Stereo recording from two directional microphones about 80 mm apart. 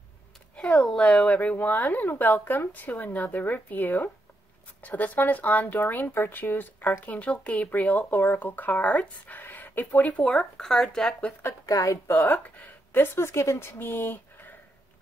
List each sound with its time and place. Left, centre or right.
0.6 s speech: centre
10.2 s speech: centre
11.4 s a woman's voice: left
12.1 s speech: left